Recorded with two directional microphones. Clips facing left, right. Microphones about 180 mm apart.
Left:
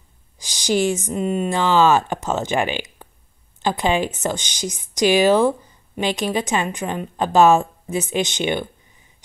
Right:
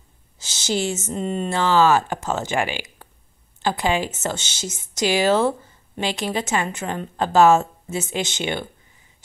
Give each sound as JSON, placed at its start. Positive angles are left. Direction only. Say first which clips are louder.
{"t": 0.4, "sound": "speech", "louder": "left 5 dB", "side_deg": 15}